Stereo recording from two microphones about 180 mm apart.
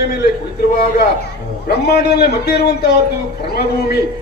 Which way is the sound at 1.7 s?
65° left (ahead or behind).